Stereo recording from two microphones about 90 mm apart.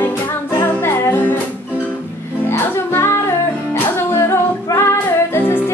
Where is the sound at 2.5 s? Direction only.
30° left (ahead or behind).